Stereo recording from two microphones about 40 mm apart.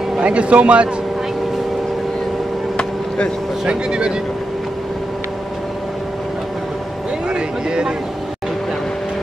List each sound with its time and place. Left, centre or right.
0.2 s a man's voice: right
3.6 s a man's voice: right
7.2 s a man's voice: right